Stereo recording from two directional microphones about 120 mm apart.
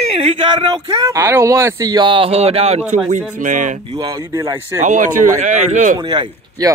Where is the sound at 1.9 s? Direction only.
40° right (ahead or behind); by 2.8 s 60° right (ahead or behind).